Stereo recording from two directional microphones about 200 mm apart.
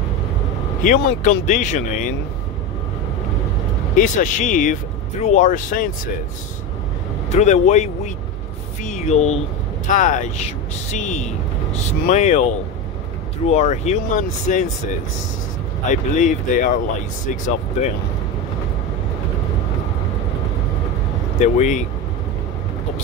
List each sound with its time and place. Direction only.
0.8 s speech: 40° left (ahead or behind)
3.9 s speech: 40° left (ahead or behind)
7.3 s speech: 35° left (ahead or behind)
8.8 s a sound: 35° left (ahead or behind)
9.8 s speech: 40° left (ahead or behind)
15.9 s speech: 40° left (ahead or behind)
21.4 s speech: 35° left (ahead or behind)